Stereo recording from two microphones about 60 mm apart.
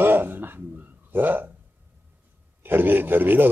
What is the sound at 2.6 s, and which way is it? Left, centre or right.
Speech, right.